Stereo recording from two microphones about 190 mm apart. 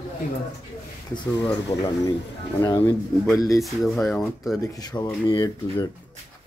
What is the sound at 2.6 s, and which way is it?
Speech, 15° left (ahead or behind).